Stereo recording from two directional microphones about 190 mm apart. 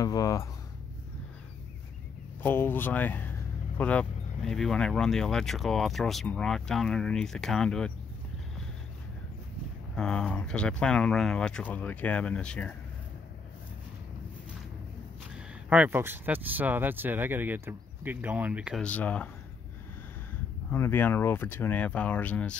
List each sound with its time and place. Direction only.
0.0 s speech: 20° left (ahead or behind)
2.4 s speech: 10° left (ahead or behind)
9.9 s speech: 5° left (ahead or behind)
15.3 s speech: 5° right (ahead or behind)
18.9 s speech: 5° left (ahead or behind)
20.7 s speech: 10° left (ahead or behind)